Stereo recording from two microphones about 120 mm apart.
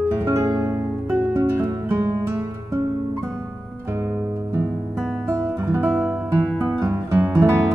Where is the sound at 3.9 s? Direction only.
25° right (ahead or behind).